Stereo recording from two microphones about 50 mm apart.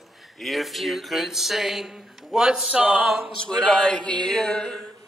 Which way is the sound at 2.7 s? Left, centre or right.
Right.